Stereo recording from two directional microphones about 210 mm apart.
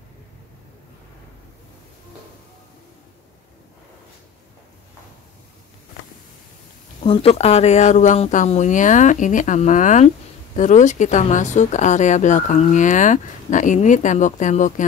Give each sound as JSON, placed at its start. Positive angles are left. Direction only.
{"t": 7.0, "sound": "speech", "side_deg": 25}